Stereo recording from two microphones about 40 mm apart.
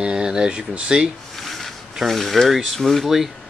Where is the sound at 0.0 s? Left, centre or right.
Right.